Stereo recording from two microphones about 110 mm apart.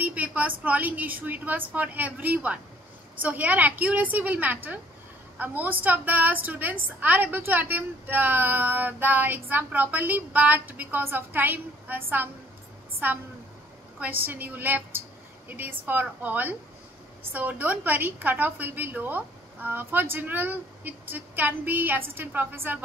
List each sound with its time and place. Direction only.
0.0 s a woman's voice: 15° right (ahead or behind)
13.9 s a woman's voice: 15° right (ahead or behind)